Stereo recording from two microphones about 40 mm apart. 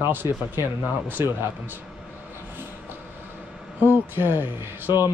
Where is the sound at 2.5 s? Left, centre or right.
Right.